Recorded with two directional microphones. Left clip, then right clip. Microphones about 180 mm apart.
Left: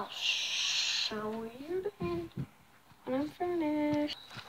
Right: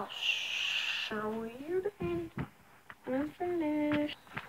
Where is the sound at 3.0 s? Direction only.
5° left (ahead or behind).